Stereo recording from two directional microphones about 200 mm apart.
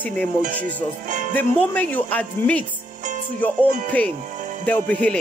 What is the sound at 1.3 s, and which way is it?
Speech, 10° left (ahead or behind).